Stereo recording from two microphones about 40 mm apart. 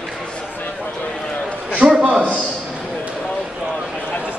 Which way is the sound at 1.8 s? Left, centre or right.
Right.